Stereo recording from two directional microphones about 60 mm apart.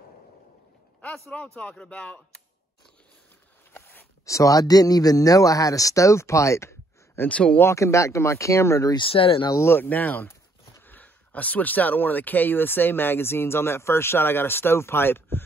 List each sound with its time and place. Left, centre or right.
1.6 s speech: left
3.7 s a sound: left
4.3 s speech: left
7.2 s speech: left
7.6 s speech: left
9.8 s speech: left